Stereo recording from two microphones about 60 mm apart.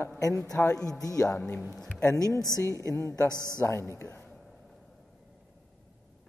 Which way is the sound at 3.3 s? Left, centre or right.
Right.